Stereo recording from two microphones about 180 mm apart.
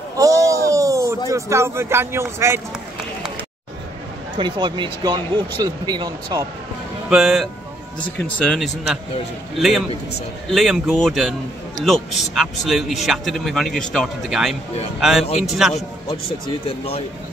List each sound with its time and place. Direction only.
0.2 s a sound: 20° right (ahead or behind)
1.3 s speech: 15° right (ahead or behind)
4.4 s speech: 25° right (ahead or behind)
7.1 s speech: centre (ahead or behind)
15.7 s a man's voice: 30° left (ahead or behind)